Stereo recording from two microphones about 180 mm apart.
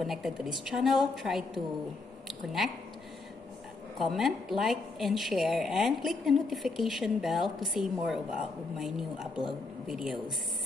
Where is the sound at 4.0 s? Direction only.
Centre (ahead or behind).